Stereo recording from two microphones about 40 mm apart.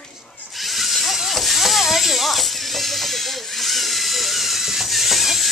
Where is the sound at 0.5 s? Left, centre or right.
Centre.